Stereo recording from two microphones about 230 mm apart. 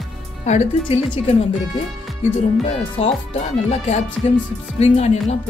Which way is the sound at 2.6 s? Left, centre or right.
Left.